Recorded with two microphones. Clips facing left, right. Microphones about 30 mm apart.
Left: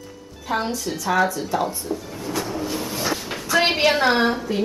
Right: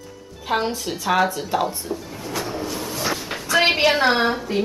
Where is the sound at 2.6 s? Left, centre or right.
Centre.